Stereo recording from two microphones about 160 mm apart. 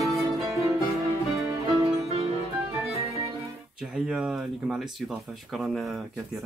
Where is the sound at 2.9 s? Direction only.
20° right (ahead or behind).